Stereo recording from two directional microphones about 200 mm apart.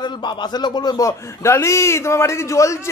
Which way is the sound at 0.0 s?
20° left (ahead or behind).